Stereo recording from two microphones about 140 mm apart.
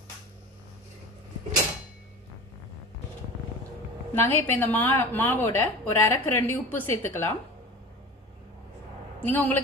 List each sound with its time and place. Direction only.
4.1 s a woman's voice: 15° left (ahead or behind)
9.2 s a woman's voice: 15° left (ahead or behind)